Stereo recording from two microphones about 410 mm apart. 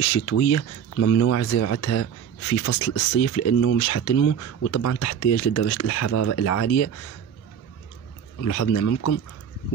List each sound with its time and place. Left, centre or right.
0.0 s speech: left
8.5 s speech: left